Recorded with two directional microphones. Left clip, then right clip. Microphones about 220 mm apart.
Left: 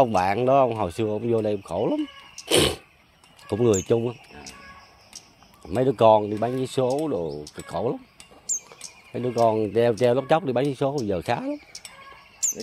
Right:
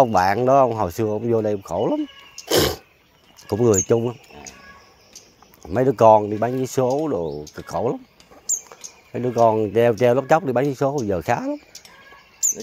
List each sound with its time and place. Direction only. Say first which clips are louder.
0.0 s speech: right 4 dB; 20° right (ahead or behind)
2.4 s cat: right 2 dB; 15° right (ahead or behind)
3.4 s speech: right 3 dB; 20° right (ahead or behind)
5.6 s speech: right 4 dB; 20° right (ahead or behind)
8.6 s bird: right 2 dB; 20° right (ahead or behind)
9.3 s speech: right 4 dB; 20° right (ahead or behind)